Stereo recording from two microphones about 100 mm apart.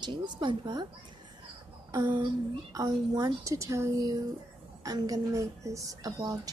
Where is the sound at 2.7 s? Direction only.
40° right (ahead or behind).